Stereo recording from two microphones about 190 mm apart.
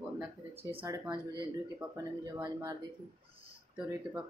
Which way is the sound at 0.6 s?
30° right (ahead or behind).